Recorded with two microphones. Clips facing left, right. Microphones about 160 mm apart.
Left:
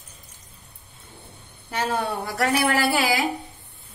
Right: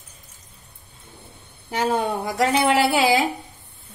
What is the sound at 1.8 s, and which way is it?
A woman's voice, 15° right (ahead or behind).